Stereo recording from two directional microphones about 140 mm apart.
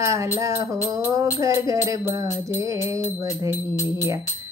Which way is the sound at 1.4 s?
25° right (ahead or behind).